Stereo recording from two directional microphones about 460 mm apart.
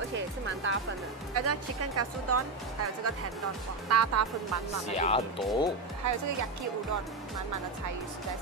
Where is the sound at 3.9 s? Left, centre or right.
Right.